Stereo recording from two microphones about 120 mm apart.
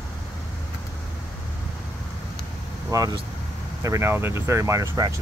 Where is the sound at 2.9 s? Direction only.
30° right (ahead or behind).